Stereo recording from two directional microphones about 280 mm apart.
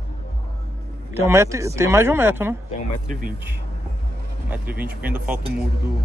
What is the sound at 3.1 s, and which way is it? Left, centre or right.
Speech, right.